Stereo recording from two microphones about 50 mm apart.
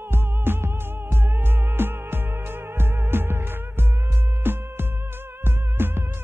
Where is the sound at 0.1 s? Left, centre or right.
Right.